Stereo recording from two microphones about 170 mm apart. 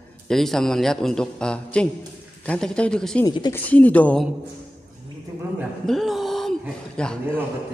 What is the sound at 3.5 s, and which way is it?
Speech, 10° left (ahead or behind).